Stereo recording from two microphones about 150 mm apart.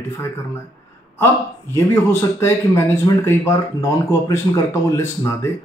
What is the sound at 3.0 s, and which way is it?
Speech, 20° left (ahead or behind).